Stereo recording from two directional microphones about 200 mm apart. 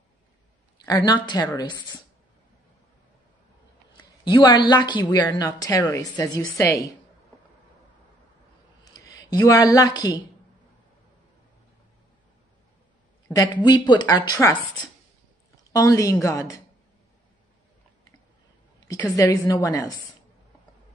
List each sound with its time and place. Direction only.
0.8 s a woman's voice: 20° left (ahead or behind)
3.9 s a woman's voice: 25° left (ahead or behind)
8.9 s speech: 20° left (ahead or behind)
13.4 s a woman's voice: 20° left (ahead or behind)
15.7 s a woman's voice: 15° left (ahead or behind)
18.9 s a woman's voice: 15° left (ahead or behind)